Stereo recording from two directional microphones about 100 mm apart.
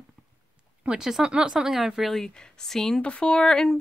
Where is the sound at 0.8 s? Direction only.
10° right (ahead or behind).